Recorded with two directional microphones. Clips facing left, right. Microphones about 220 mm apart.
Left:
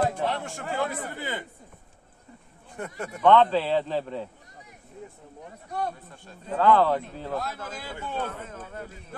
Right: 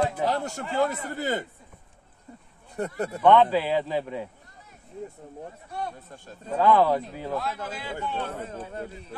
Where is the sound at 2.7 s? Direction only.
35° right (ahead or behind).